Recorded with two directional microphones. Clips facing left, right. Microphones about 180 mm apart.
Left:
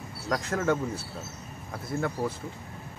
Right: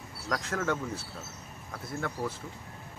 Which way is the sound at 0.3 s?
25° left (ahead or behind).